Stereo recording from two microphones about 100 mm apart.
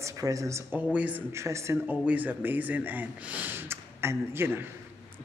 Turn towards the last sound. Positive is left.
turn(degrees=-25)  # may be behind; listen again after turning